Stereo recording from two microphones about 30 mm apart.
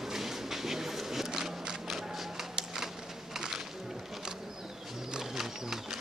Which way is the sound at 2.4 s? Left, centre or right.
Centre.